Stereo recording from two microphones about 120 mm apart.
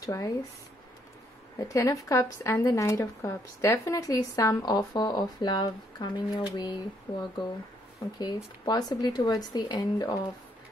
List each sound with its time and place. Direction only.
0.0 s speech: 30° left (ahead or behind)
1.6 s speech: 25° left (ahead or behind)
7.1 s speech: 50° left (ahead or behind)
8.2 s speech: 35° left (ahead or behind)